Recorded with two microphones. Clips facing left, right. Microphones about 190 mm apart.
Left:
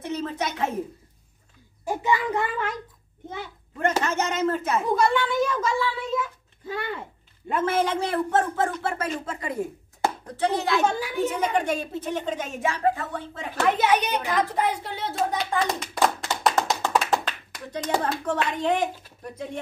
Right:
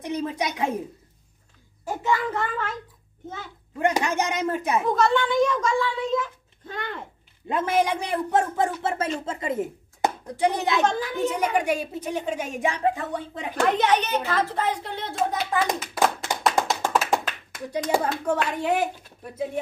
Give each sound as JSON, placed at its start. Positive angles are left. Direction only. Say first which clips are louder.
{"t": 0.0, "sound": "a woman's voice", "louder": "right 1 dB", "side_deg": -15}
{"t": 1.9, "sound": "a child's voice", "louder": "left 1 dB", "side_deg": 15}
{"t": 3.8, "sound": "a man's voice", "louder": "right 1 dB", "side_deg": -15}
{"t": 4.9, "sound": "speech", "louder": "right 1 dB", "side_deg": 5}
{"t": 7.4, "sound": "a man's voice", "louder": "right 1 dB", "side_deg": -15}
{"t": 10.8, "sound": "speech", "louder": "right 1 dB", "side_deg": 10}
{"t": 11.3, "sound": "a man's voice", "louder": "right 1 dB", "side_deg": -10}
{"t": 13.7, "sound": "a child's voice", "louder": "left 1 dB", "side_deg": 10}
{"t": 16.6, "sound": "tap", "louder": "even", "side_deg": 0}
{"t": 17.9, "sound": "a man's voice", "louder": "right 1 dB", "side_deg": -10}